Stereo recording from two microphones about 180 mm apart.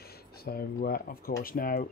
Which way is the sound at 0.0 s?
60° left (ahead or behind).